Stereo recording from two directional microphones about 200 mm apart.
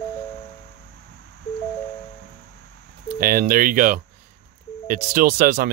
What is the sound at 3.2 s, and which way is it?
Speech, 45° right (ahead or behind).